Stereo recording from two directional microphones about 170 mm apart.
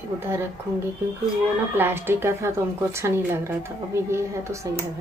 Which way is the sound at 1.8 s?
10° right (ahead or behind).